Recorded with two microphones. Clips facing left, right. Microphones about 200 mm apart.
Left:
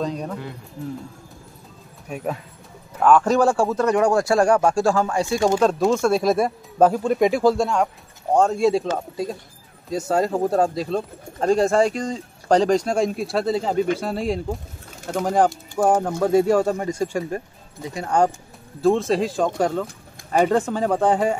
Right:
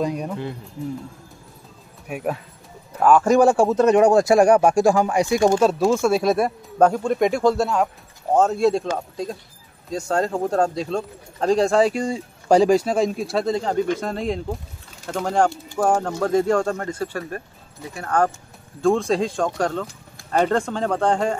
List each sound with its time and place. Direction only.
0.0 s speech: 10° right (ahead or behind)
2.0 s speech: 10° right (ahead or behind); by 18.3 s 15° left (ahead or behind)
18.8 s speech: 5° left (ahead or behind)